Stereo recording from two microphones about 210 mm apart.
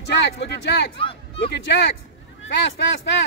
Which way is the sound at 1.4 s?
55° left (ahead or behind).